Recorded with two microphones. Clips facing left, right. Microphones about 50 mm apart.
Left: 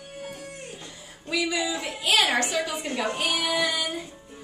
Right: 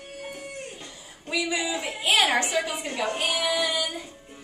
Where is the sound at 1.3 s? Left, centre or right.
Right.